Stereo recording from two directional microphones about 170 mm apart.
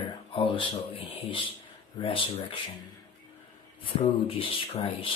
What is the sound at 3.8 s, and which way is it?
Speech, 30° left (ahead or behind).